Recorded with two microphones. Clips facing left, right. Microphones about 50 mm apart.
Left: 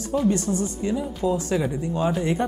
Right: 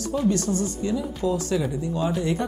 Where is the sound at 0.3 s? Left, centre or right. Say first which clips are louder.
Even; left.